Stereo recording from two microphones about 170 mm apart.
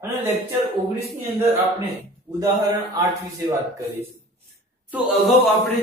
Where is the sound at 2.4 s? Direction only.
20° right (ahead or behind).